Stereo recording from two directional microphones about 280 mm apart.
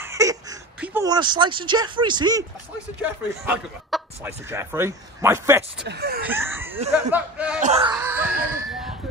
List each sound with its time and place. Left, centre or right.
0.0 s speech: centre
3.0 s speech: centre
5.9 s speech: right
6.2 s speech: centre
7.6 s speech: right
7.9 s a sound: centre